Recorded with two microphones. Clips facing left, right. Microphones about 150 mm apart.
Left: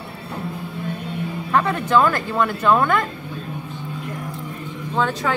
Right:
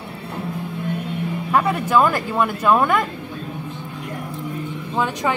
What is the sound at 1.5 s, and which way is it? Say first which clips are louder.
Speech: even; 10° right (ahead or behind).